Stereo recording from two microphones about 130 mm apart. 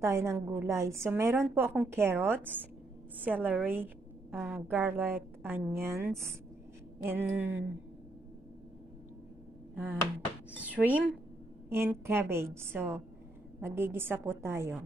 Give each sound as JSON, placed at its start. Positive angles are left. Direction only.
{"t": 0.0, "sound": "a woman's voice", "side_deg": -20}
{"t": 10.6, "sound": "a woman's voice", "side_deg": -10}